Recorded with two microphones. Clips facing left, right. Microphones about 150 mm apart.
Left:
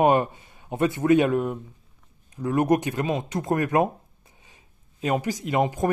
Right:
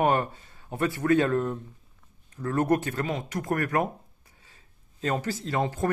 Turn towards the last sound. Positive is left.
turn(degrees=15)  # may be behind; listen again after turning